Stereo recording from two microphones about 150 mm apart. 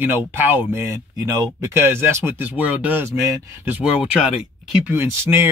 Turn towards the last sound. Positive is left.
turn(degrees=-15)  # may be behind; listen again after turning